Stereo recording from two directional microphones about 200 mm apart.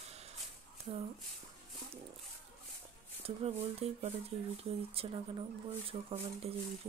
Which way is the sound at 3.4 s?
30° right (ahead or behind).